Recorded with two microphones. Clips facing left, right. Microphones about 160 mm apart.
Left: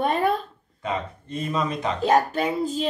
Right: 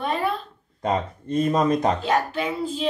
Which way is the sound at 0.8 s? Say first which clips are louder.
Right 4 dB; 45° right (ahead or behind).